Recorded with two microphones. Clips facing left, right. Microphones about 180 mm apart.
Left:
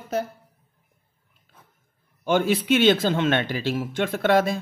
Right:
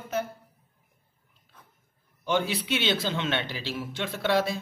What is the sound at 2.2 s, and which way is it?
Speech, 50° left (ahead or behind).